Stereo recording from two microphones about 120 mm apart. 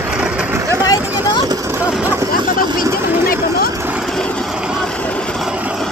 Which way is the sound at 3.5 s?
30° right (ahead or behind).